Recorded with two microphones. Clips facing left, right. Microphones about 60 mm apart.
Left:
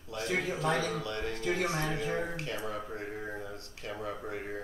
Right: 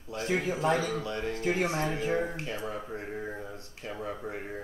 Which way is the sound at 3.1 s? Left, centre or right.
Centre.